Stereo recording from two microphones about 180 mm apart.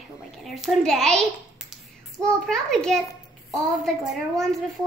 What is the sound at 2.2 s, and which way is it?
Child singing, 5° left (ahead or behind).